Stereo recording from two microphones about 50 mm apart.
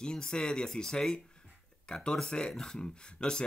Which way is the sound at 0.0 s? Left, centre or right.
Centre.